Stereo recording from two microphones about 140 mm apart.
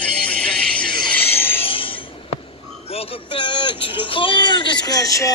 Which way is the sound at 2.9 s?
40° left (ahead or behind).